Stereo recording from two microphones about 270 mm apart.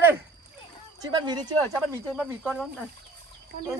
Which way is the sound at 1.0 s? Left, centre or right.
Centre.